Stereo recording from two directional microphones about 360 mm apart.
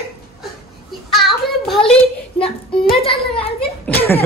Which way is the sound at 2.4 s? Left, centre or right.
Centre.